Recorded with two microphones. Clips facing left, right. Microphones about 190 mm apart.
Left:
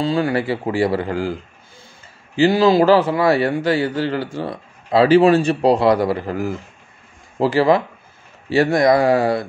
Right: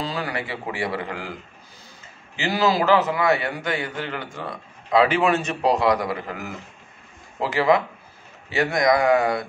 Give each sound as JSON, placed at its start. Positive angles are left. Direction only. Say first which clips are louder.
{"t": 0.0, "sound": "a man's voice", "louder": "left 9 dB", "side_deg": 30}
{"t": 2.3, "sound": "a man's voice", "louder": "left 8 dB", "side_deg": 30}